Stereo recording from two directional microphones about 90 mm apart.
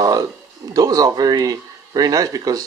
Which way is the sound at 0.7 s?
45° right (ahead or behind).